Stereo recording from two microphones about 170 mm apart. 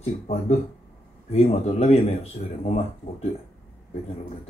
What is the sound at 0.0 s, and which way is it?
A man's voice, 40° left (ahead or behind).